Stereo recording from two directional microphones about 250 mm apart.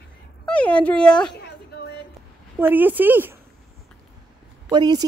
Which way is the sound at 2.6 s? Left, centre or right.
Centre.